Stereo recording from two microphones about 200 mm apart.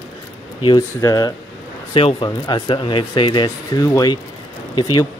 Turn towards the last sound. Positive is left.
turn(degrees=25)  # may be behind; listen again after turning